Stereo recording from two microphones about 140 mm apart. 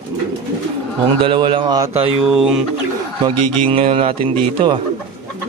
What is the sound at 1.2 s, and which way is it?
Speech, 40° right (ahead or behind).